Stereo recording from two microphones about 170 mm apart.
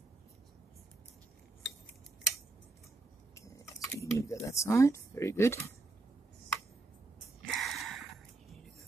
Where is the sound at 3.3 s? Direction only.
20° left (ahead or behind).